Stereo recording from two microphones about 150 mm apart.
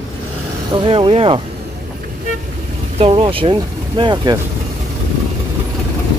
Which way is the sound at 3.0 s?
40° right (ahead or behind).